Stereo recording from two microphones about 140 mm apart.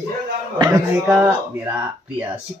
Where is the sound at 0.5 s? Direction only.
30° right (ahead or behind).